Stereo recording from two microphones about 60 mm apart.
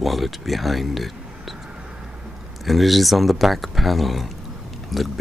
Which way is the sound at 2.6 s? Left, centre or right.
Centre.